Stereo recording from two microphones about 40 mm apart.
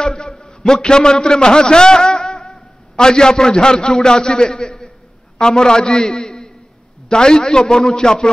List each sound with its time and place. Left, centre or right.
0.0 s a man's voice: centre
0.4 s a sound: centre
0.8 s a man's voice: centre